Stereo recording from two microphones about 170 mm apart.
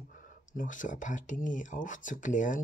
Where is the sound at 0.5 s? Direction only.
50° left (ahead or behind).